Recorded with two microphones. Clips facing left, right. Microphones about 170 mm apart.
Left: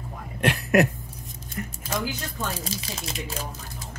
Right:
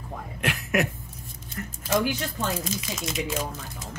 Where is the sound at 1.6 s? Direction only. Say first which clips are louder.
Left 2 dB; 20° left (ahead or behind).